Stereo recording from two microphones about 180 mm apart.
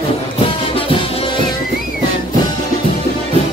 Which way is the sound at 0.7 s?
30° left (ahead or behind).